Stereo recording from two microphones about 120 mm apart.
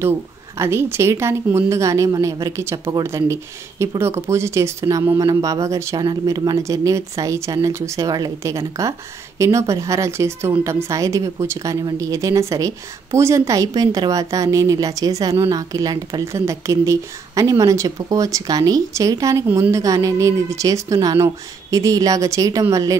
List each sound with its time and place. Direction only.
0.6 s a woman's voice: 20° right (ahead or behind)
5.9 s a woman's voice: 35° right (ahead or behind)